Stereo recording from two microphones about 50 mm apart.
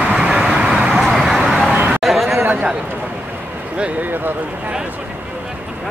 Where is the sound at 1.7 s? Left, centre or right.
Right.